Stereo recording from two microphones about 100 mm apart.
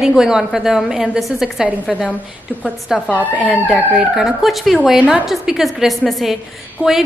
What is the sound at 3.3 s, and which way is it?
A woman's voice, 5° right (ahead or behind).